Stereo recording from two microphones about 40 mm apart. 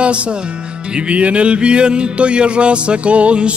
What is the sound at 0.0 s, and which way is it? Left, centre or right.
Music, right.